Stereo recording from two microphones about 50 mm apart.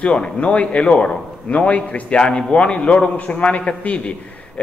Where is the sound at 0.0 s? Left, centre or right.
Left.